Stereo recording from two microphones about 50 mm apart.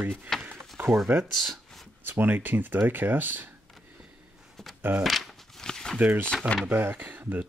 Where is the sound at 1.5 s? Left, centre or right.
Centre.